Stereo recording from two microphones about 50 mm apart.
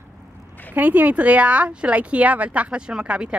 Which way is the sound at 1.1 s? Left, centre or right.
Right.